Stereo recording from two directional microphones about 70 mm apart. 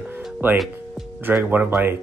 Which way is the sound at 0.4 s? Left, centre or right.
Right.